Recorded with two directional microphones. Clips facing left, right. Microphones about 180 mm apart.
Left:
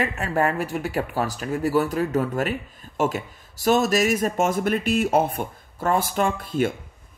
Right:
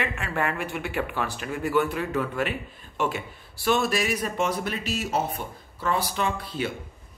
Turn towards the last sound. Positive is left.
turn(degrees=50)  # may be behind; listen again after turning